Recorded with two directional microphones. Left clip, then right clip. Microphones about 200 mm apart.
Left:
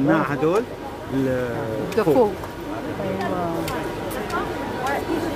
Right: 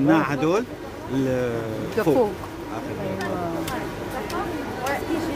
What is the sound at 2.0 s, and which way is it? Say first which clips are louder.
Speech: left 2 dB; 5° left (ahead or behind).